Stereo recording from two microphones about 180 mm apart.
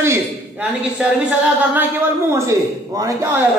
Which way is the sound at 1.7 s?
10° right (ahead or behind).